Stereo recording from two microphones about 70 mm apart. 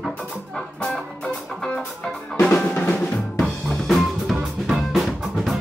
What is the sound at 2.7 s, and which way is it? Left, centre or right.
Drum, left.